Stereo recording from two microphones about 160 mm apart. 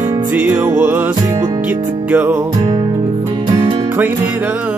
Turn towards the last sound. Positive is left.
turn(degrees=-20)  # may be behind; listen again after turning